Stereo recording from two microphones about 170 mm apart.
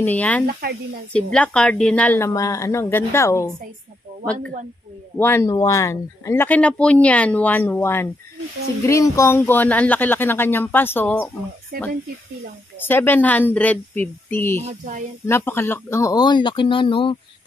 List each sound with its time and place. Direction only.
0.0 s speech: 10° left (ahead or behind)
0.5 s speech: 65° right (ahead or behind)
1.1 s speech: 5° left (ahead or behind)
5.2 s speech: 15° left (ahead or behind)
11.7 s speech: 65° right (ahead or behind)
12.8 s speech: 10° left (ahead or behind)
14.6 s speech: 40° right (ahead or behind)
15.2 s speech: 15° left (ahead or behind); by 17.2 s 30° left (ahead or behind)